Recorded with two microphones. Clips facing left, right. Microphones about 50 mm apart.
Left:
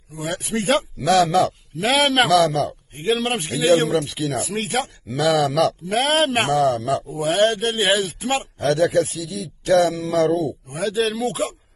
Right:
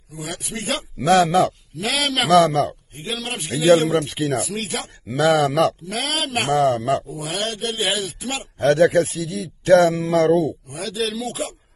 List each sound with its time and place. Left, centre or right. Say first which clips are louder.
0.1 s speech: left 5 dB; left
1.0 s speech: right 2 dB; right
1.8 s speech: left 5 dB; left
2.3 s speech: right 2 dB; right
3.0 s speech: left 7 dB; left
3.9 s speech: right 1 dB; right
4.4 s speech: left 3 dB; left
5.1 s speech: right 1 dB; right
5.9 s speech: left 7 dB; left
6.5 s speech: right 1 dB; right
7.2 s speech: left 8 dB; left
8.5 s speech: right 4 dB; right
10.7 s speech: left 4 dB; left